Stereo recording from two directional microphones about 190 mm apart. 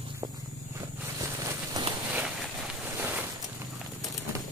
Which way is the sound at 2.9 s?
10° right (ahead or behind).